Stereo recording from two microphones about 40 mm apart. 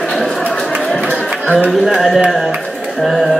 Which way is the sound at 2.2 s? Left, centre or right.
Centre.